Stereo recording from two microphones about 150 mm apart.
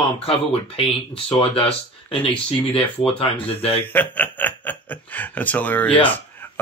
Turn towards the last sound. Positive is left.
turn(degrees=10)  # may be behind; listen again after turning